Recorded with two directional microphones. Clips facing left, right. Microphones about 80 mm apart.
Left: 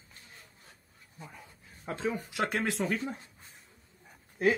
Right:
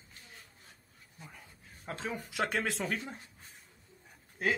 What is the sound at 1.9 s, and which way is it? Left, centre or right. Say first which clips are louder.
Speech: left 5 dB; centre.